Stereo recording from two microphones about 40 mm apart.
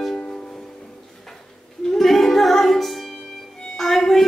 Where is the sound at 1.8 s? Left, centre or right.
Centre.